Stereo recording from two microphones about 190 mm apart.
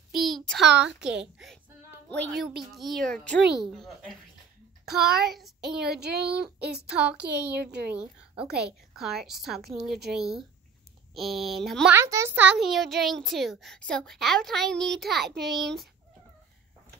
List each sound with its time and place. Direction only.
0.2 s a child's voice: centre (ahead or behind)
0.7 s child singing: 5° right (ahead or behind)
2.4 s a child's voice: centre (ahead or behind)
5.9 s speech: 60° right (ahead or behind)
6.2 s a child's voice: 5° right (ahead or behind)
7.6 s speech: 60° right (ahead or behind)
7.9 s a woman's voice: 5° right (ahead or behind)
11.9 s a child's voice: 15° right (ahead or behind)